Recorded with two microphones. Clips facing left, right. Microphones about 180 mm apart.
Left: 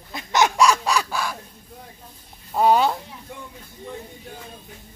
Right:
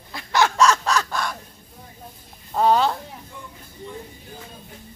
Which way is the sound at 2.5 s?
10° left (ahead or behind).